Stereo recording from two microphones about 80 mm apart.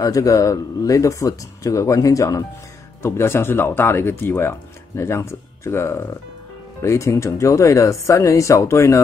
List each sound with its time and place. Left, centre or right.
0.0 s speech: left
3.0 s speech: left